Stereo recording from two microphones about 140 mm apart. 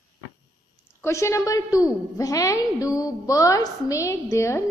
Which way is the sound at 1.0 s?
20° left (ahead or behind).